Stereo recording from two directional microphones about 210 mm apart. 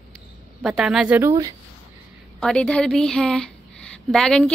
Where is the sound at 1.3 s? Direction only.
15° right (ahead or behind).